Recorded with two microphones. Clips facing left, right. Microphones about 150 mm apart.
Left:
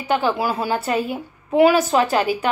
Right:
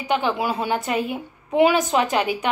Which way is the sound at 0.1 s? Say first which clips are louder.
Left 2 dB; 20° right (ahead or behind).